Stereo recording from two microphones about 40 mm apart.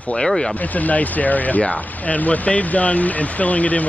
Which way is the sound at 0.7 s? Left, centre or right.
Left.